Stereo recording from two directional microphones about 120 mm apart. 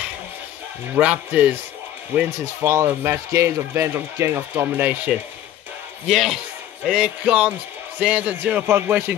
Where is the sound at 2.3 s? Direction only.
25° right (ahead or behind).